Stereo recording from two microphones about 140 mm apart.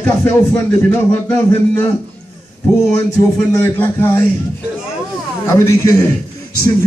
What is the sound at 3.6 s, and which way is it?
Speech, 15° left (ahead or behind).